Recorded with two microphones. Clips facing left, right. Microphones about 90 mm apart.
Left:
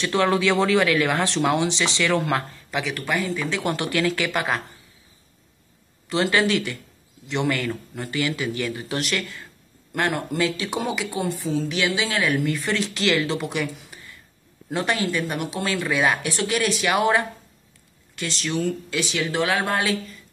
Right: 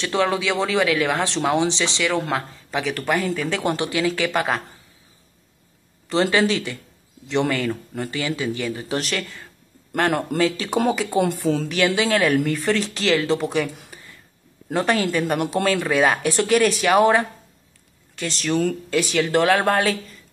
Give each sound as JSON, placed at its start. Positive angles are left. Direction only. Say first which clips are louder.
{"t": 0.0, "sound": "speech", "louder": "left 1 dB", "side_deg": -20}
{"t": 2.7, "sound": "a woman's voice", "louder": "right 3 dB", "side_deg": -40}
{"t": 3.6, "sound": "speech", "louder": "right 1 dB", "side_deg": -25}
{"t": 6.3, "sound": "speech", "louder": "right 1 dB", "side_deg": -30}
{"t": 8.2, "sound": "speech", "louder": "left 1 dB", "side_deg": -30}
{"t": 11.1, "sound": "a woman's voice", "louder": "right 4 dB", "side_deg": -60}
{"t": 14.7, "sound": "a woman's voice", "louder": "right 3 dB", "side_deg": -45}